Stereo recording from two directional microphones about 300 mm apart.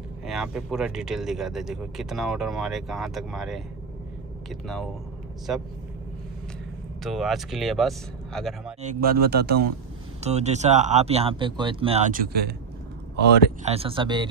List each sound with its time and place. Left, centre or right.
0.3 s speech: centre
7.0 s speech: centre
9.0 s a man's voice: right
10.2 s speech: right
13.7 s speech: centre